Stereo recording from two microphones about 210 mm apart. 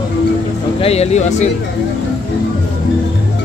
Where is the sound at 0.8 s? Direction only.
30° left (ahead or behind).